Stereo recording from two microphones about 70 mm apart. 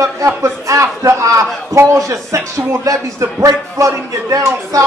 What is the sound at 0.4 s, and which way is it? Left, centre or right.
A woman's voice, right.